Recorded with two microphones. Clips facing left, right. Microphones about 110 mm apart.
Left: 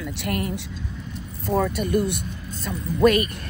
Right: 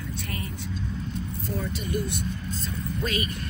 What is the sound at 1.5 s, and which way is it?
A woman's voice, 70° left (ahead or behind).